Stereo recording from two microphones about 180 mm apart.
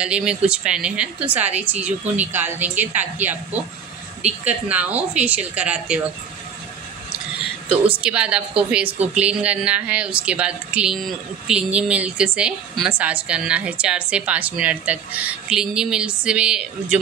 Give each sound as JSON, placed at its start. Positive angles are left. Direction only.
{"t": 0.0, "sound": "speech", "side_deg": -5}
{"t": 7.8, "sound": "speech", "side_deg": -5}